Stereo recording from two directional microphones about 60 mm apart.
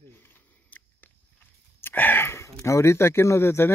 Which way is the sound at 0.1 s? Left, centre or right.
Left.